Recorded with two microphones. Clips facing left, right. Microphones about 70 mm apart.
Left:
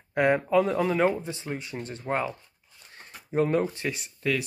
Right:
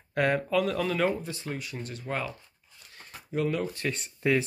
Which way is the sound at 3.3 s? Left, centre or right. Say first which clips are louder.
Left 5 dB; left.